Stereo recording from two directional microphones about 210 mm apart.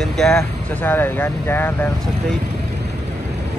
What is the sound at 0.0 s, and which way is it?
Speech, centre (ahead or behind).